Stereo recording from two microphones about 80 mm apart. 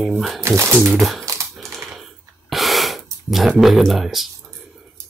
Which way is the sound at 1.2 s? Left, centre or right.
Right.